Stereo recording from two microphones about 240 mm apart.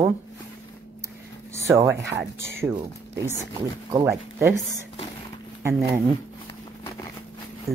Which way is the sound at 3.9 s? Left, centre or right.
Centre.